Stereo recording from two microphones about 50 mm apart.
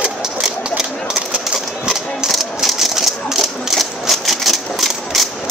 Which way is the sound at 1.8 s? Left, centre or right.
Centre.